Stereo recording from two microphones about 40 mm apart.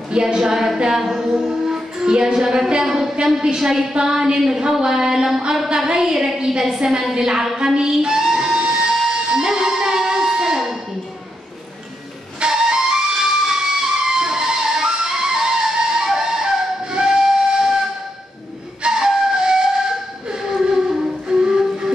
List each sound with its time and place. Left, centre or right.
0.1 s a sound: centre
1.5 s a woman's voice: centre
3.3 s a sound: centre
6.8 s a woman's voice: centre
9.1 s music: centre
12.4 s flute: centre
18.8 s flute: centre
20.2 s music: centre